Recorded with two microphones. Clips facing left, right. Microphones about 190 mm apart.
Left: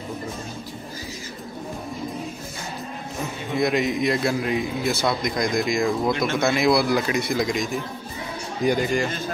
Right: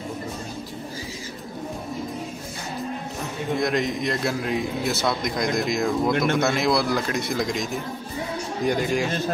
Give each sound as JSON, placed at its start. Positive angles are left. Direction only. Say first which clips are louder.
{"t": 3.5, "sound": "a man's voice", "louder": "left 3 dB", "side_deg": 5}
{"t": 6.1, "sound": "speech", "louder": "right 2 dB", "side_deg": -55}
{"t": 6.4, "sound": "a man's voice", "louder": "left 2 dB", "side_deg": 0}
{"t": 8.6, "sound": "a man's voice", "louder": "left 2 dB", "side_deg": 0}